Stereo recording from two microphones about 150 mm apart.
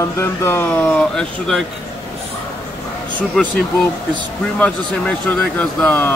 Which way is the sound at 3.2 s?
5° left (ahead or behind).